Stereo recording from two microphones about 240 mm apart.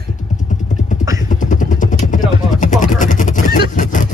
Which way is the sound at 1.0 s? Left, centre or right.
Centre.